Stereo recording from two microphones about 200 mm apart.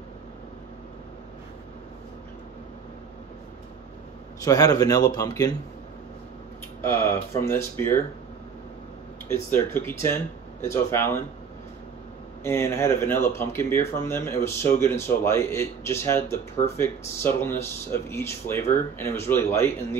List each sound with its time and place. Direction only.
4.5 s speech: 20° left (ahead or behind)
6.8 s speech: 10° left (ahead or behind)
9.3 s speech: 10° left (ahead or behind)
12.4 s speech: 10° left (ahead or behind)